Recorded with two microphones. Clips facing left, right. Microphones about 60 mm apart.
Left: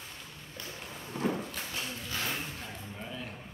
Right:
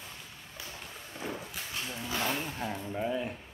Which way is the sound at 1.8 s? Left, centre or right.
Centre.